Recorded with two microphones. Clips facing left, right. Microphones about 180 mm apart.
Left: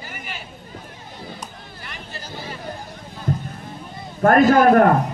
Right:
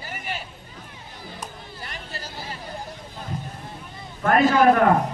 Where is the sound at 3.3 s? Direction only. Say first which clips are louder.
Left 9 dB; 50° left (ahead or behind).